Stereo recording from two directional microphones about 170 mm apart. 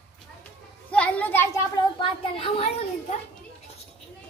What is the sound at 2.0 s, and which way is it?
Speech, 35° left (ahead or behind).